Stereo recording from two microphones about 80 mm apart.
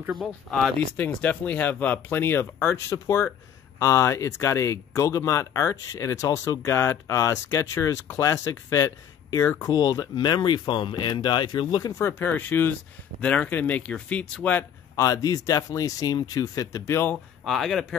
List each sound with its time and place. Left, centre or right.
0.1 s speech: centre
0.9 s speech: left
9.6 s speech: left
12.0 s speech: left
14.6 s speech: left
17.5 s speech: centre